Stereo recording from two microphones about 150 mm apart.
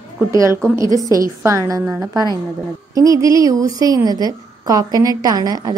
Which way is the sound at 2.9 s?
20° right (ahead or behind).